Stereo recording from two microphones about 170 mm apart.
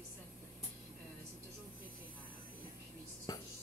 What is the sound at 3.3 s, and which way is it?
Music, 20° left (ahead or behind).